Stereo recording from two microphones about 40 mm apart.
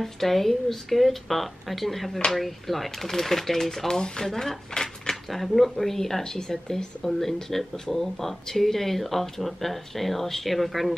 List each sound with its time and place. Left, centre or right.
0.0 s a woman's voice: centre
5.3 s speech: centre